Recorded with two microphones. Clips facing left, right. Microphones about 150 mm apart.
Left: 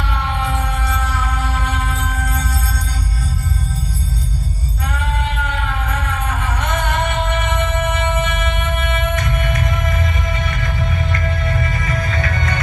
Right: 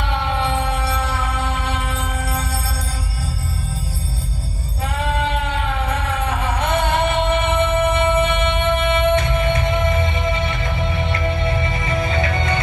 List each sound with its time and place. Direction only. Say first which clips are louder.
0.3 s music: right 2 dB; 30° right (ahead or behind)
4.9 s music: right 3 dB; 30° right (ahead or behind)